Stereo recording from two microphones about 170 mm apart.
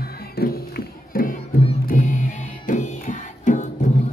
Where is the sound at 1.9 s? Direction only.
50° left (ahead or behind).